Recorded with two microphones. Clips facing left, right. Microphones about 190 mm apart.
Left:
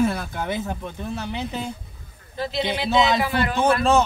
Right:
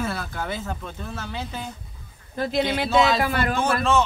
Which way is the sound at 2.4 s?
50° right (ahead or behind).